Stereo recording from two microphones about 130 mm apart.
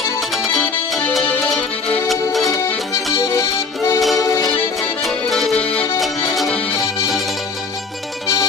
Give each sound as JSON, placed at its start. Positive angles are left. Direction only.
{"t": 0.9, "sound": "music", "side_deg": 0}
{"t": 2.3, "sound": "accordion", "side_deg": 0}
{"t": 2.6, "sound": "accordion", "side_deg": 20}
{"t": 3.2, "sound": "music", "side_deg": 25}
{"t": 5.0, "sound": "music", "side_deg": 0}